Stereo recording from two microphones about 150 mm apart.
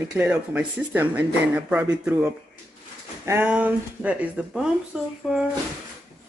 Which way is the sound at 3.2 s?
15° right (ahead or behind).